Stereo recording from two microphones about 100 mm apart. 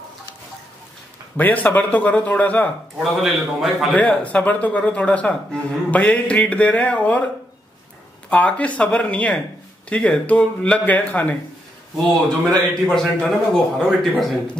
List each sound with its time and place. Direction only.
1.3 s speech: 15° left (ahead or behind)
3.0 s a man's voice: centre (ahead or behind)
3.9 s speech: 15° left (ahead or behind)
8.3 s speech: 15° left (ahead or behind)